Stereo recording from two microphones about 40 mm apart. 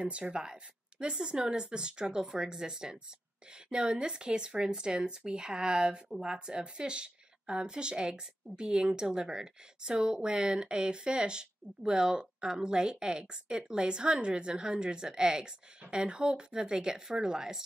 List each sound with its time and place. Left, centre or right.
0.0 s speech: right